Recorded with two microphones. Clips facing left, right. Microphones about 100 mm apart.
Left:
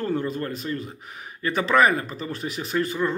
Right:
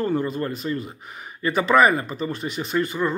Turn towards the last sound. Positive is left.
turn(degrees=0)  # may be behind; listen again after turning